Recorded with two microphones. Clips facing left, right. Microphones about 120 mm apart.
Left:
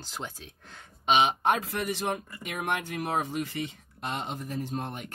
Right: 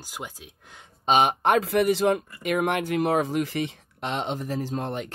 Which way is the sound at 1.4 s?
75° right (ahead or behind).